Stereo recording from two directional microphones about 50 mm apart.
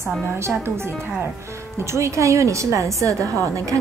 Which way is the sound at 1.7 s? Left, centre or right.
Right.